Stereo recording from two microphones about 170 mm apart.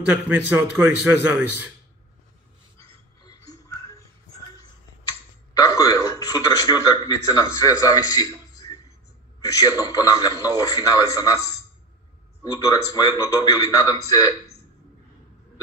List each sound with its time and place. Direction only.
0.1 s a man's voice: 10° right (ahead or behind)
3.3 s music: 20° left (ahead or behind)
5.5 s a man's voice: 20° left (ahead or behind)
12.4 s a man's voice: 20° left (ahead or behind)